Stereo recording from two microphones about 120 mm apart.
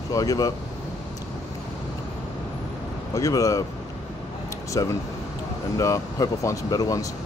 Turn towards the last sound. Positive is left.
turn(degrees=30)  # may be behind; listen again after turning